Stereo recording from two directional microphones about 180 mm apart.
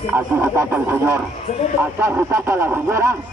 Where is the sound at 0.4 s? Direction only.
15° right (ahead or behind).